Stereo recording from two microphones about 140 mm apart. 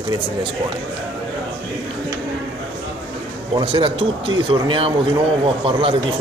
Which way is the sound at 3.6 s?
40° right (ahead or behind).